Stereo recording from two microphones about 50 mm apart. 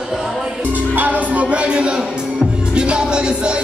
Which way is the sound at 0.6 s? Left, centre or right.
Right.